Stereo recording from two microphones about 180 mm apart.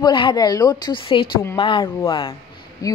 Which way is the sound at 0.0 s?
25° left (ahead or behind).